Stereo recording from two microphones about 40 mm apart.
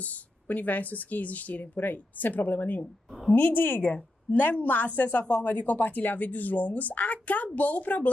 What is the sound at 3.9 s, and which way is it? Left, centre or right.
A woman's voice, left.